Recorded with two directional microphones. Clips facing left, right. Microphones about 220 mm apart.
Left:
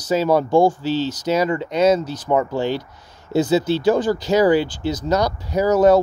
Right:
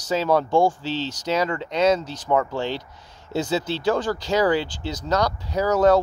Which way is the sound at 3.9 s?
20° left (ahead or behind).